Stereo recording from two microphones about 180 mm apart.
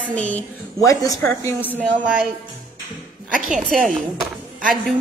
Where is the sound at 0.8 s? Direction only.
20° left (ahead or behind).